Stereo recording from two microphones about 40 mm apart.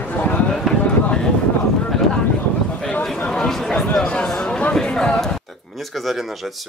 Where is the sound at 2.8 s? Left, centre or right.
Left.